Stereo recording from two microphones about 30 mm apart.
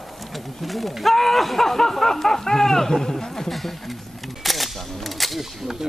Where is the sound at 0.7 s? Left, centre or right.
Centre.